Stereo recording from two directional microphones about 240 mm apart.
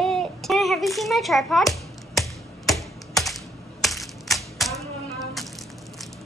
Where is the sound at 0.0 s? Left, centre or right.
Centre.